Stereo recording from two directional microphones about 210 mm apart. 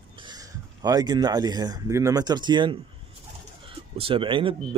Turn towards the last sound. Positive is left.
turn(degrees=-25)  # may be behind; listen again after turning